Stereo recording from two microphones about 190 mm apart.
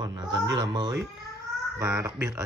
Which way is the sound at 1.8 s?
15° right (ahead or behind).